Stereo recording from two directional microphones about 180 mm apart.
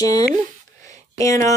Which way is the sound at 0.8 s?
20° left (ahead or behind).